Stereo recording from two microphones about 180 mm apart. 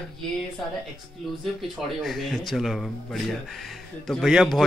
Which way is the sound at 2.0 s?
Centre (ahead or behind).